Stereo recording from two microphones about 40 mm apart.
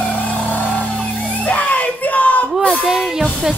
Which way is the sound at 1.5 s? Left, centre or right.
Left.